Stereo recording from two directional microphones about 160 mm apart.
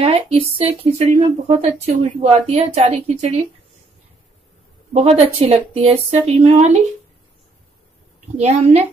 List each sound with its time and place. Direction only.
0.0 s speech: 35° right (ahead or behind)
4.9 s speech: 45° right (ahead or behind)
8.4 s speech: 45° right (ahead or behind)